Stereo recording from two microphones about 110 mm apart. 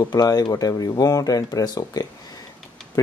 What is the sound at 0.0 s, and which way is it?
Speech, 40° left (ahead or behind).